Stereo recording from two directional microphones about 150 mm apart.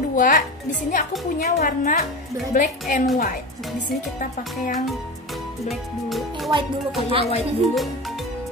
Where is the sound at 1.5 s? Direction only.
55° left (ahead or behind).